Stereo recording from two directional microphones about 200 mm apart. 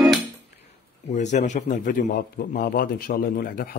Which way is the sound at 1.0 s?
35° left (ahead or behind).